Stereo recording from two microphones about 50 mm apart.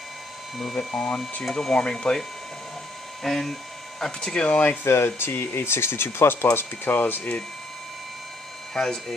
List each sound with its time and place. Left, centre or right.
0.9 s speech: centre
4.5 s speech: left
4.8 s speech: left
8.7 s speech: centre